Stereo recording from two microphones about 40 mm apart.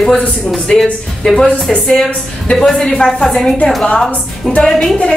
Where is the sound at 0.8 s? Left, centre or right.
Centre.